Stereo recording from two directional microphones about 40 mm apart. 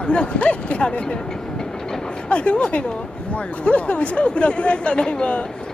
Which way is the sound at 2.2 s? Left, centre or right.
Left.